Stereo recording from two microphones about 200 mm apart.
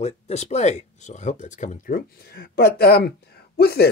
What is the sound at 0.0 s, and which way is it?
Speech, 35° left (ahead or behind).